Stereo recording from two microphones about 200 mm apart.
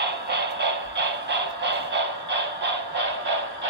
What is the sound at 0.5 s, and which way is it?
Music, 60° right (ahead or behind).